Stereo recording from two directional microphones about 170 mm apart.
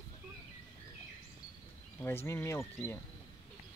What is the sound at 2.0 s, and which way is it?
Speech, 15° left (ahead or behind).